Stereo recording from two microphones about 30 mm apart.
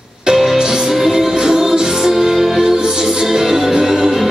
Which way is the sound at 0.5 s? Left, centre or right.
Centre.